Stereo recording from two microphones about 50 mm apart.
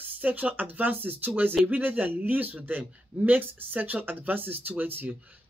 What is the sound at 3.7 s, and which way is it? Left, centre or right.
Speech, right.